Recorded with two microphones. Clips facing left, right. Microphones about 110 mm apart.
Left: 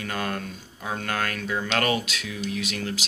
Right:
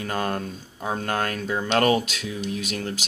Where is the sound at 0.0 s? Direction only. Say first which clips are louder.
Right 3 dB; 35° right (ahead or behind).